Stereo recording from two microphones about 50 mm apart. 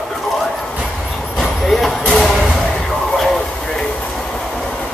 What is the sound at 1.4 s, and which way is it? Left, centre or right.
Clip-clop, centre.